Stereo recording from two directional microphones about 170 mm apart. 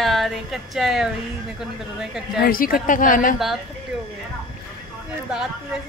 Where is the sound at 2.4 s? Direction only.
60° left (ahead or behind).